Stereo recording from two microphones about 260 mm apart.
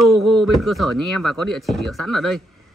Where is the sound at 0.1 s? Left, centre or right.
Centre.